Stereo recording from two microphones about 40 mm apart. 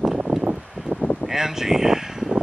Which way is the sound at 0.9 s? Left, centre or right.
Right.